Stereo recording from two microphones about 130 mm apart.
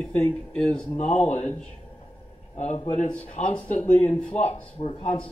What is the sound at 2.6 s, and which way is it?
Speech, 60° left (ahead or behind).